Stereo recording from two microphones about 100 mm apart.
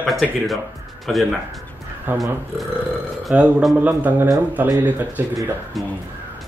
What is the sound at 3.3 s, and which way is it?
Speech, 10° right (ahead or behind).